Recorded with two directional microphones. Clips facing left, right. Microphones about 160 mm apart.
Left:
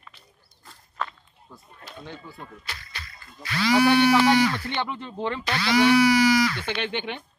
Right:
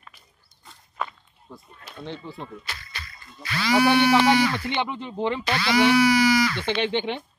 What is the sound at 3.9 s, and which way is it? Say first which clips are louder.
Speech: right 1 dB; 15° right (ahead or behind).